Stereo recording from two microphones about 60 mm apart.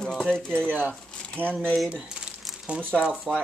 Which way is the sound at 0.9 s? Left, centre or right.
Centre.